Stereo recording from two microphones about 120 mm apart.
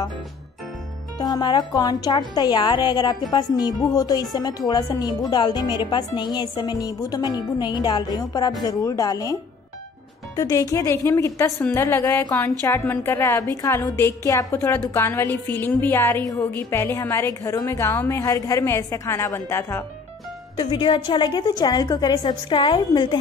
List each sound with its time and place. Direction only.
1.2 s a woman's voice: 35° left (ahead or behind)
20.5 s speech: 40° left (ahead or behind)